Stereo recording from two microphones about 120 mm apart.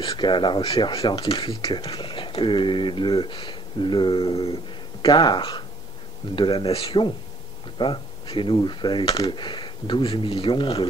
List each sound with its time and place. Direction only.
0.0 s speech: 40° left (ahead or behind)
5.0 s speech: 35° left (ahead or behind)